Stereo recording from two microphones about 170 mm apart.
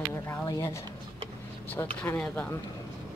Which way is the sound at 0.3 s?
20° left (ahead or behind).